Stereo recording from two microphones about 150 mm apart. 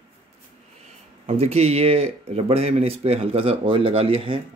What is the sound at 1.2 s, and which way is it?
Speech, 45° right (ahead or behind).